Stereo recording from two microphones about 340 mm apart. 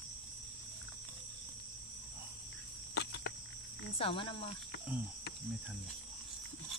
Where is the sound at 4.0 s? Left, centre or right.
Centre.